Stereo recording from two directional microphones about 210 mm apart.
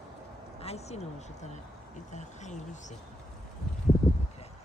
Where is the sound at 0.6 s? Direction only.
30° left (ahead or behind).